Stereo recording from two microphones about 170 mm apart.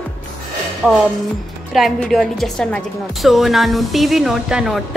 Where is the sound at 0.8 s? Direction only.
5° right (ahead or behind).